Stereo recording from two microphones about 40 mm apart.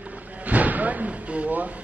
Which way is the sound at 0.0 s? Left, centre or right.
Right.